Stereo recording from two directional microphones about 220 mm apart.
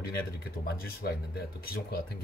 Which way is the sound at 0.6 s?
45° left (ahead or behind).